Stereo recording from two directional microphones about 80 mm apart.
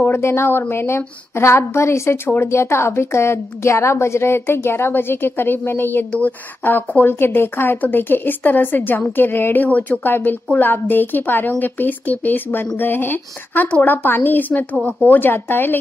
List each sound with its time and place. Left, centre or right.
0.0 s a woman's voice: left